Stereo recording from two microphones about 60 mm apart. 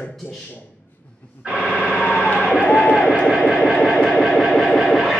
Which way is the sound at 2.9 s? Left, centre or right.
Centre.